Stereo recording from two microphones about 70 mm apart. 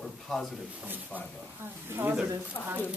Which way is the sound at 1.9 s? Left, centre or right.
Right.